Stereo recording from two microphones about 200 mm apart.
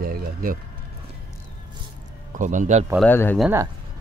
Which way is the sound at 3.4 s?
10° right (ahead or behind).